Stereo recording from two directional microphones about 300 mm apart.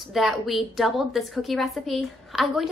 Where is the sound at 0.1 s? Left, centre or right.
Centre.